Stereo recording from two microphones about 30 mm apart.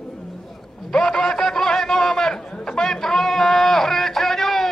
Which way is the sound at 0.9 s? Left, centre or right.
Left.